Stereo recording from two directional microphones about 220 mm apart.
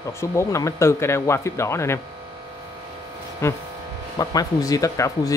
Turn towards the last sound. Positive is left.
turn(degrees=15)  # may be behind; listen again after turning